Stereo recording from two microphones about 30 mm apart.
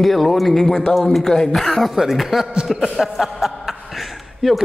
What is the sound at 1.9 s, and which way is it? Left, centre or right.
A man's voice, centre.